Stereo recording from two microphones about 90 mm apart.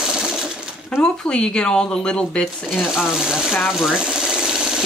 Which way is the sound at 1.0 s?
10° left (ahead or behind).